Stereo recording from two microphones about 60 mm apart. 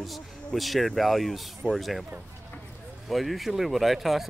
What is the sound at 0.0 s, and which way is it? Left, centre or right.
Speech, centre.